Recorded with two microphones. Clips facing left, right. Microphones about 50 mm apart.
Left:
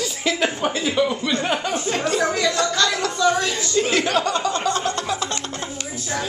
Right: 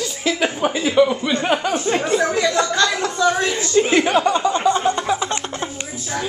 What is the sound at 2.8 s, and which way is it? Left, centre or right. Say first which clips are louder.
Chuckle: even; centre.